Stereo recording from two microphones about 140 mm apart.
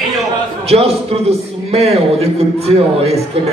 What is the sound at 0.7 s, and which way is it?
A man's voice, 45° right (ahead or behind).